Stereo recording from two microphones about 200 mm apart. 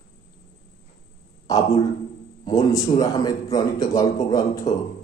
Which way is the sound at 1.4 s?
15° left (ahead or behind).